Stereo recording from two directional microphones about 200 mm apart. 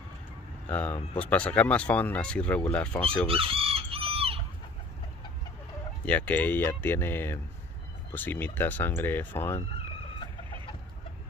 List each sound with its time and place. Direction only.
0.7 s speech: 5° left (ahead or behind)
3.3 s chicken: 30° right (ahead or behind)
6.0 s speech: 5° left (ahead or behind)